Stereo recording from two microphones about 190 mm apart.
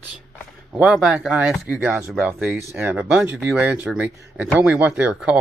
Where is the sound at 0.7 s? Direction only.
5° right (ahead or behind).